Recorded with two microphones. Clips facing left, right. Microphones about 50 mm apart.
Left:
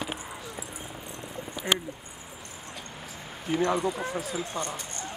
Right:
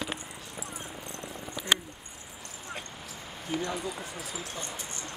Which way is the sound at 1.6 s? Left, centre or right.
Centre.